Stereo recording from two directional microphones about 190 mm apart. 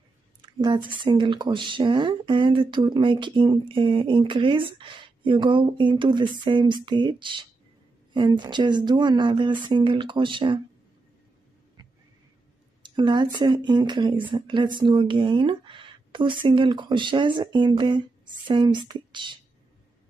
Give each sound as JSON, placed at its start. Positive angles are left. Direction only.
{"t": 0.4, "sound": "speech", "side_deg": -25}
{"t": 12.8, "sound": "speech", "side_deg": -25}